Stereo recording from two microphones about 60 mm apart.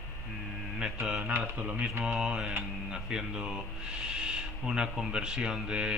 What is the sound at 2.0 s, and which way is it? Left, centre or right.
Speech, centre.